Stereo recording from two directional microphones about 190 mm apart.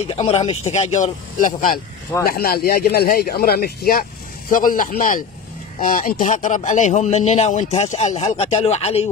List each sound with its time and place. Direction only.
0.1 s a man's voice: 30° left (ahead or behind)